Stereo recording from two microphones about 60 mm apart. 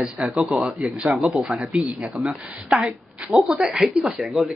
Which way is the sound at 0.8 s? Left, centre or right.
Centre.